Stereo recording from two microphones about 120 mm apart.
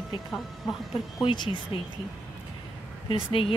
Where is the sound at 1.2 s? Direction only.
40° left (ahead or behind).